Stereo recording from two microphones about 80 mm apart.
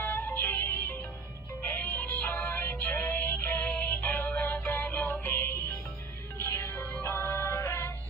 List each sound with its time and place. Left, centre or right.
0.0 s music: left